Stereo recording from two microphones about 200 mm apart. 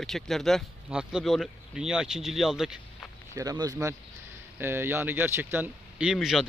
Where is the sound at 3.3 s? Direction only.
20° right (ahead or behind).